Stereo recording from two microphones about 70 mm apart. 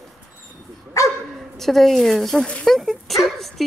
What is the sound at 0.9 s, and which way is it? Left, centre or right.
Speech, left.